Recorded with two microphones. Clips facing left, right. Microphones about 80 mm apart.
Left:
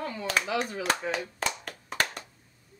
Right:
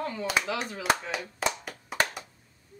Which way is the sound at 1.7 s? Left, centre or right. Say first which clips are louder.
Right 2 dB; centre.